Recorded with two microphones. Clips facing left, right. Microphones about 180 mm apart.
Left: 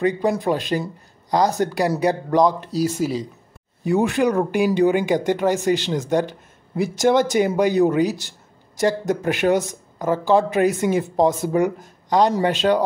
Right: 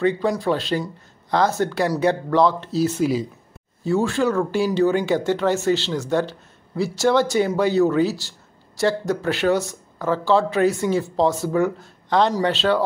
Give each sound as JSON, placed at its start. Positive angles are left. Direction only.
{"t": 0.0, "sound": "speech", "side_deg": 15}